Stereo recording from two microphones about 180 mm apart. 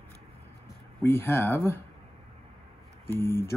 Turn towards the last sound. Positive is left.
turn(degrees=15)  # may be behind; listen again after turning